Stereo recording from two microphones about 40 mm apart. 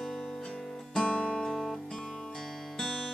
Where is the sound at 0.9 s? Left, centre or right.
Left.